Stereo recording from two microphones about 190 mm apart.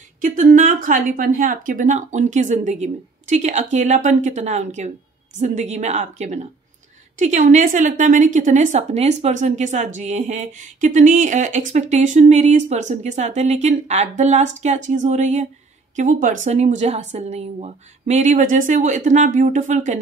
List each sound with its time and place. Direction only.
0.4 s a woman's voice: 45° right (ahead or behind)